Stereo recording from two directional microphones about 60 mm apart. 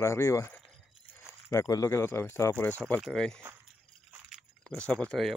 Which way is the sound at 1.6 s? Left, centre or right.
Left.